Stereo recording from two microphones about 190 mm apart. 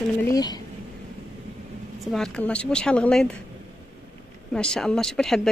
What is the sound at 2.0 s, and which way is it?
Speech, centre (ahead or behind).